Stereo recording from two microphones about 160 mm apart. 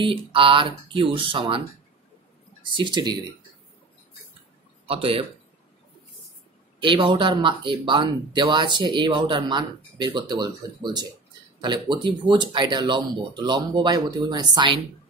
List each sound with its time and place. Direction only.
0.0 s speech: 35° right (ahead or behind)
2.6 s speech: 30° right (ahead or behind)
4.8 s speech: 35° right (ahead or behind)
6.8 s speech: 30° right (ahead or behind)